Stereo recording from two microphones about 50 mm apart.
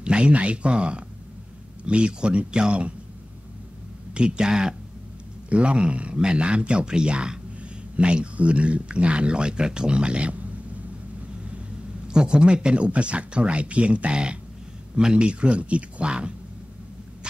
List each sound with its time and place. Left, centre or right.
0.0 s speech: right
4.1 s speech: centre
12.1 s speech: centre